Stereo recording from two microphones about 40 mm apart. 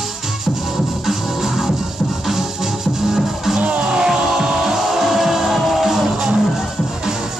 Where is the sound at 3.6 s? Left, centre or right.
Right.